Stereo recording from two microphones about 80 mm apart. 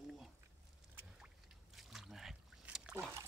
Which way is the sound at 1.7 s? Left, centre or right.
Centre.